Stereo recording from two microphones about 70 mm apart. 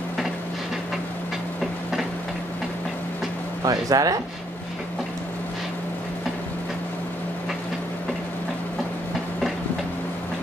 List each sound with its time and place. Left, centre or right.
3.6 s speech: right